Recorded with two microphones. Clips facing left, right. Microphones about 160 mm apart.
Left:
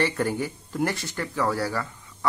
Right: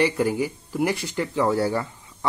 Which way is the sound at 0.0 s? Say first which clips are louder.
Right 4 dB; 10° right (ahead or behind).